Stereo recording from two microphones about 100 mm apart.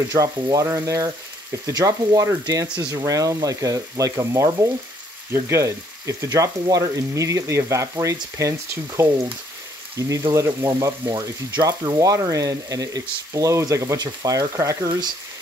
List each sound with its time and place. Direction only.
0.1 s speech: 35° right (ahead or behind)